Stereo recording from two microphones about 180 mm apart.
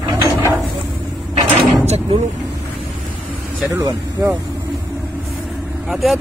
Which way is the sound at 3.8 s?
15° right (ahead or behind).